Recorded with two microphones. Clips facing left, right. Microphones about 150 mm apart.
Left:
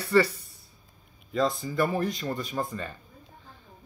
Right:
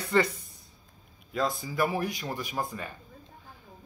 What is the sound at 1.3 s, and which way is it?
Speech, centre (ahead or behind).